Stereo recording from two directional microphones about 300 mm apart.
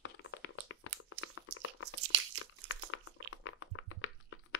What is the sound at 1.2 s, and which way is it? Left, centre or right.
Crunch, left.